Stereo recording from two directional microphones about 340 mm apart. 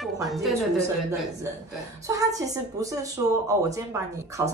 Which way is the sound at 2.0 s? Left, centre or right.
Centre.